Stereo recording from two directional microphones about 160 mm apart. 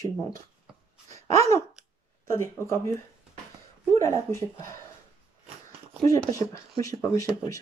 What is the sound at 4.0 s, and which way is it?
Speech, 15° left (ahead or behind).